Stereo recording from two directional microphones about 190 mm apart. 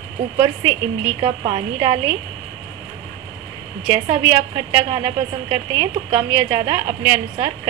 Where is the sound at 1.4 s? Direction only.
25° right (ahead or behind).